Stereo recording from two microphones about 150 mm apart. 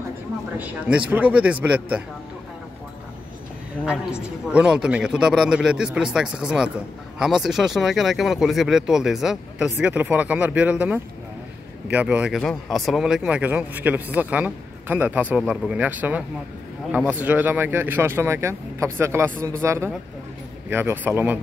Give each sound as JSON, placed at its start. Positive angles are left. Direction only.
{"t": 0.6, "sound": "speech", "side_deg": -10}
{"t": 4.1, "sound": "speech", "side_deg": -5}